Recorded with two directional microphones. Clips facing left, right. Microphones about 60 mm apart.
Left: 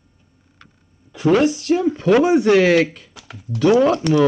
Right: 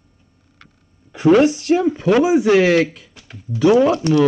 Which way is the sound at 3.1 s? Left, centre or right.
Left.